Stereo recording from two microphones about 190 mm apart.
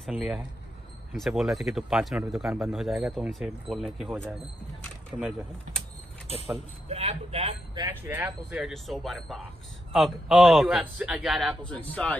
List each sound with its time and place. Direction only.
0.0 s a man's voice: centre (ahead or behind)
5.1 s speech: 25° right (ahead or behind)
6.9 s speech: 35° right (ahead or behind)
7.7 s a man's voice: 15° right (ahead or behind); by 12.2 s 5° left (ahead or behind)